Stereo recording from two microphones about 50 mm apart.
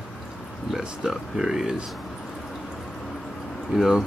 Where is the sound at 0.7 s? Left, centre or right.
Centre.